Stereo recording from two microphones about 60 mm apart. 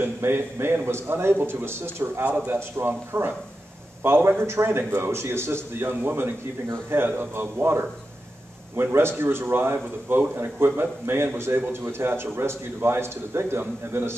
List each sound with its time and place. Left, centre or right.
0.0 s a man's voice: right